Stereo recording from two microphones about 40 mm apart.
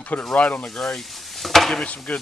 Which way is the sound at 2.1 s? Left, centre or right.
Left.